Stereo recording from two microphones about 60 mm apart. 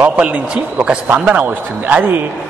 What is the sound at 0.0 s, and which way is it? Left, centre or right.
A man's voice, right.